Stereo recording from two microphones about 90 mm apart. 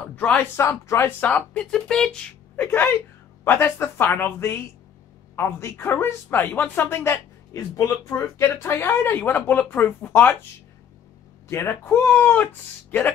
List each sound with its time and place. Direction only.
0.1 s speech: 15° left (ahead or behind)
0.6 s speech: 30° left (ahead or behind)
1.2 s speech: 15° left (ahead or behind)
2.5 s speech: 20° left (ahead or behind)
11.4 s speech: 30° left (ahead or behind)